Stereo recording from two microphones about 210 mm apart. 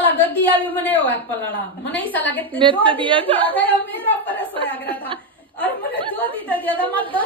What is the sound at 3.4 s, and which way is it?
Speech, 10° left (ahead or behind).